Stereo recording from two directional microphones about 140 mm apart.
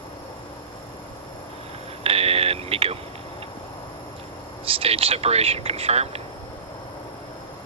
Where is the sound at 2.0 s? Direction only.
45° right (ahead or behind).